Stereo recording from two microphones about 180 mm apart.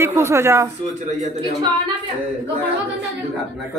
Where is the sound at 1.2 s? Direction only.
40° right (ahead or behind).